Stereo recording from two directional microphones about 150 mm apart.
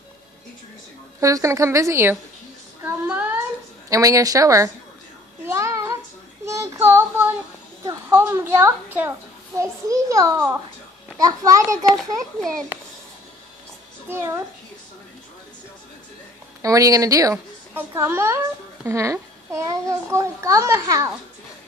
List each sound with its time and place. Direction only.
1.2 s a child's voice: 20° right (ahead or behind)
3.9 s a child's voice: 20° right (ahead or behind)
5.4 s child singing: 20° right (ahead or behind)
6.4 s a woman's voice: 20° right (ahead or behind)
12.4 s a child's voice: 5° left (ahead or behind)
14.0 s a woman's voice: 15° right (ahead or behind)
16.6 s a child's voice: 20° right (ahead or behind)